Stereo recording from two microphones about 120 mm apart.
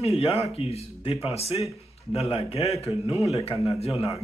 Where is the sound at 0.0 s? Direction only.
55° left (ahead or behind).